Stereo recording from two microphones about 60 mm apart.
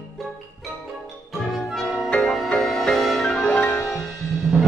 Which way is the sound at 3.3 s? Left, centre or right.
Centre.